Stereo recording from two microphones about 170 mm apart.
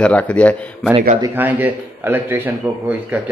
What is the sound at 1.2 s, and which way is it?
Speech, 10° right (ahead or behind).